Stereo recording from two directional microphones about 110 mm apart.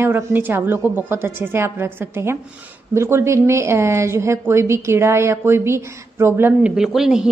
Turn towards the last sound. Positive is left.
turn(degrees=-5)  # may be behind; listen again after turning